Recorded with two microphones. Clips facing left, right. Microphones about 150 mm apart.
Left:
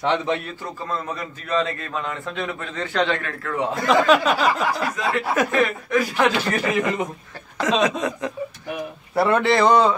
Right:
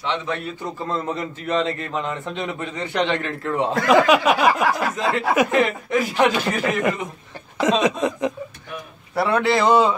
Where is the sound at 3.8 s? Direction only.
10° right (ahead or behind).